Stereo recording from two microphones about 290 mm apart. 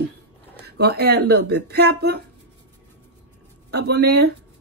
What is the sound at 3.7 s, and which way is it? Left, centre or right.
Speech, right.